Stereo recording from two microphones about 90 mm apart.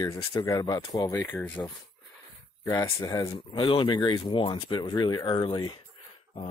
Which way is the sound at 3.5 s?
65° left (ahead or behind).